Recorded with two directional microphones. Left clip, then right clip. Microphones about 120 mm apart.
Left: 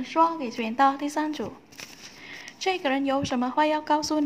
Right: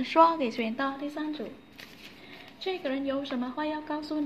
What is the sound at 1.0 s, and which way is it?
Speech, 50° left (ahead or behind).